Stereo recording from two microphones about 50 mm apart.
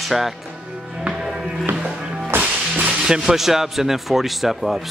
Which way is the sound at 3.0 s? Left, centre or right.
Centre.